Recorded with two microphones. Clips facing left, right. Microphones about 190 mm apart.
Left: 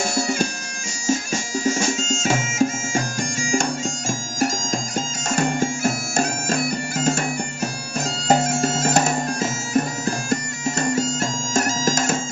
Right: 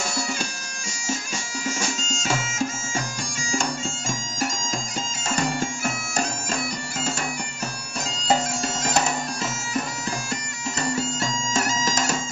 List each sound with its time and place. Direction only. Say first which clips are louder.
0.1 s bagpipes: left 7 dB; 50° left (ahead or behind)
2.2 s bagpipes: left 6 dB; 45° left (ahead or behind)
8.3 s bagpipes: left 5 dB; 50° left (ahead or behind)